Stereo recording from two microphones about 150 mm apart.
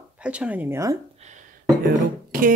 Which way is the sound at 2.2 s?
65° right (ahead or behind).